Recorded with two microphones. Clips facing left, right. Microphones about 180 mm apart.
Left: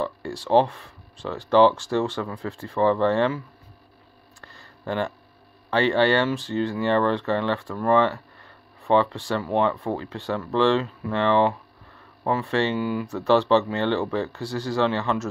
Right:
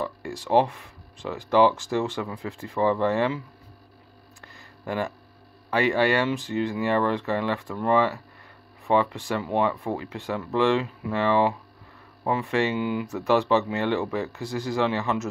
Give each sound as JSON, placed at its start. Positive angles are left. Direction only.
{"t": 0.0, "sound": "speech", "side_deg": -10}
{"t": 4.4, "sound": "a sound", "side_deg": -10}
{"t": 5.7, "sound": "speech", "side_deg": -10}
{"t": 13.0, "sound": "speech", "side_deg": -10}